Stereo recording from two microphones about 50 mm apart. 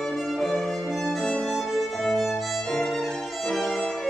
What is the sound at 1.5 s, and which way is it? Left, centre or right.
Violin, centre.